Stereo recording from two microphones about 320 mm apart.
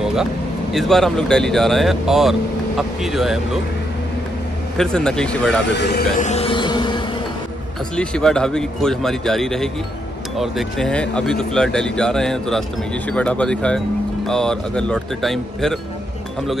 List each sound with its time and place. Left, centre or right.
0.0 s vehicle: centre
0.7 s speech: centre
4.7 s speech: centre
5.7 s speech: left; by 7.1 s centre
7.9 s speech: centre